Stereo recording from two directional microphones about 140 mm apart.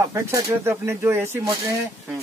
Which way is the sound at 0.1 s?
20° right (ahead or behind).